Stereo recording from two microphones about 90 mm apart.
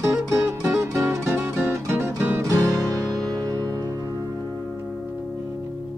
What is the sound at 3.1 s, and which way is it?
Music, 40° right (ahead or behind).